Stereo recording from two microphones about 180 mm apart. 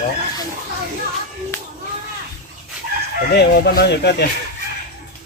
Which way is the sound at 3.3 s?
65° left (ahead or behind).